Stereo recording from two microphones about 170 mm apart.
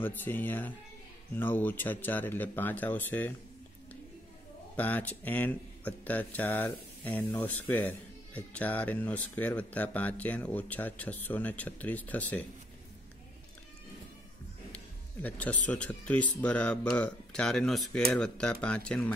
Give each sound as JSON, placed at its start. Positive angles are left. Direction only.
{"t": 0.0, "sound": "speech", "side_deg": 10}
{"t": 4.7, "sound": "speech", "side_deg": 10}
{"t": 15.2, "sound": "speech", "side_deg": 10}